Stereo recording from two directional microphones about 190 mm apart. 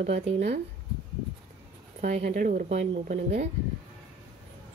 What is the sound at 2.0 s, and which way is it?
Speech, 40° right (ahead or behind).